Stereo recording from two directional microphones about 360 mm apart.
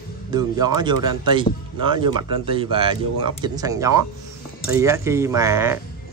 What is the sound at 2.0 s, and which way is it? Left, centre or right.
Speech, centre.